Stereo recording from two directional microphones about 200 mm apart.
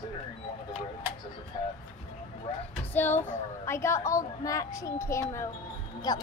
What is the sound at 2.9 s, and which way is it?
A woman's voice, 10° left (ahead or behind).